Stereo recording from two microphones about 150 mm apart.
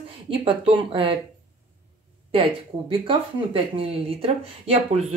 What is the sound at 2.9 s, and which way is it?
Speech, 35° right (ahead or behind).